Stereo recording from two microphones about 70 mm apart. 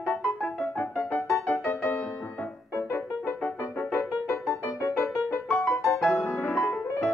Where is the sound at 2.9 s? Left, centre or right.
Left.